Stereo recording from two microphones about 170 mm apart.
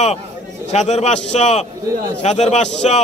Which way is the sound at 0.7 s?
40° left (ahead or behind).